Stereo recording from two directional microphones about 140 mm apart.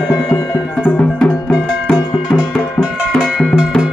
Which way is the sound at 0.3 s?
10° left (ahead or behind).